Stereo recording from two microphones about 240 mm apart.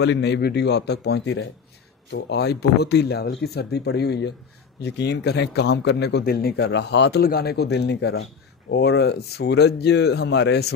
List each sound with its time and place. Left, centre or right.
0.0 s speech: left